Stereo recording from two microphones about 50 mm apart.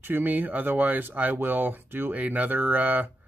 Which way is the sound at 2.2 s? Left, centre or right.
Right.